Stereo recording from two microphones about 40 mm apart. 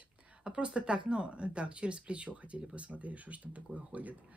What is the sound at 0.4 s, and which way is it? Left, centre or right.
Speech, right.